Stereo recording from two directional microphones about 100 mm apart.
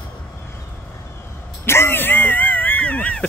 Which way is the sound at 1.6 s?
25° left (ahead or behind).